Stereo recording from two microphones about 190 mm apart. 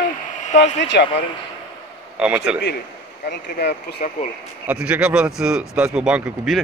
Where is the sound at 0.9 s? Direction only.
60° left (ahead or behind).